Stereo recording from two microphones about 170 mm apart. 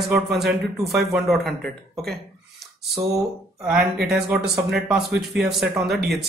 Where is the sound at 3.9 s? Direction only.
70° right (ahead or behind).